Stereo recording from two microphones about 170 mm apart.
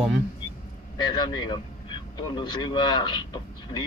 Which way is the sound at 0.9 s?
25° left (ahead or behind).